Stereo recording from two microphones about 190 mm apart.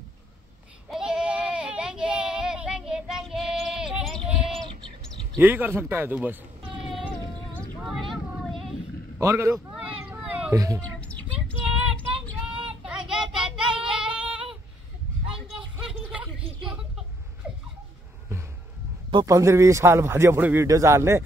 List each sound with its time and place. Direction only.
0.8 s child singing: centre (ahead or behind)
5.4 s a man's voice: 10° right (ahead or behind)
7.8 s child singing: centre (ahead or behind)
9.2 s a man's voice: 15° right (ahead or behind)
9.8 s cat: 5° right (ahead or behind)
10.8 s bird: 5° left (ahead or behind)
12.4 s child singing: 5° right (ahead or behind)
15.7 s a sound: 5° right (ahead or behind)
19.0 s a man's voice: 20° right (ahead or behind)